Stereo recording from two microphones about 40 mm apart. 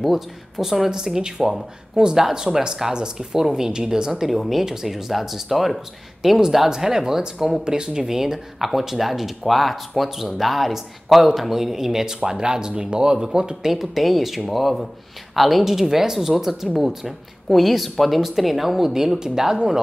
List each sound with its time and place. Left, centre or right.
0.0 s speech: centre
4.1 s speech: centre